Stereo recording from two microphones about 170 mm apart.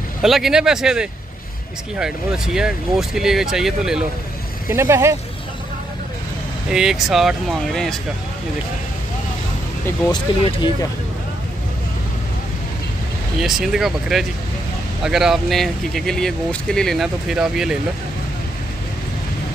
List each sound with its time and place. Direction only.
0.2 s speech: centre (ahead or behind)
4.6 s speech: 15° right (ahead or behind)
6.7 s speech: 5° right (ahead or behind)
10.4 s speech: 25° left (ahead or behind)
13.4 s speech: 5° right (ahead or behind)